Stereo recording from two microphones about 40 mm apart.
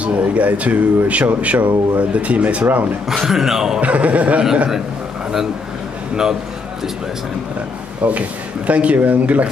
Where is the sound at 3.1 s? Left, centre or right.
Centre.